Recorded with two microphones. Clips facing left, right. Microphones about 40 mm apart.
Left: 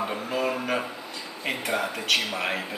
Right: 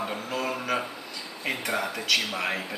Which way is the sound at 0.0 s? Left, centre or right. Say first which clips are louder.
Left 3 dB; centre.